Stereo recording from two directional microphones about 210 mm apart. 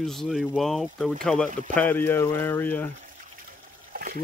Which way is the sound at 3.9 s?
40° right (ahead or behind).